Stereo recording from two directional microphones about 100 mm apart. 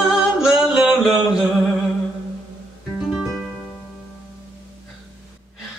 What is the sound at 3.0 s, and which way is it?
Music, 5° right (ahead or behind).